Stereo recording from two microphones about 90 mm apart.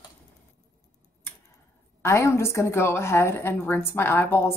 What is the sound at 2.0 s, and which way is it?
A woman's voice, 30° left (ahead or behind).